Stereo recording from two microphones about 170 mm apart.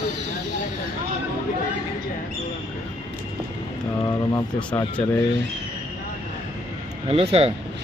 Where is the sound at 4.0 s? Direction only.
20° left (ahead or behind).